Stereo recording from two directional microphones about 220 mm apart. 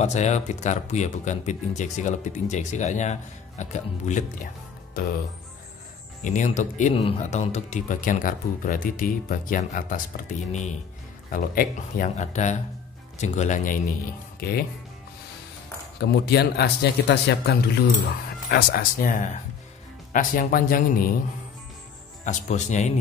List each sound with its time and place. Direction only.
0.0 s speech: 30° left (ahead or behind)
6.2 s speech: 35° left (ahead or behind)
16.0 s speech: 50° left (ahead or behind)
22.2 s speech: 35° left (ahead or behind)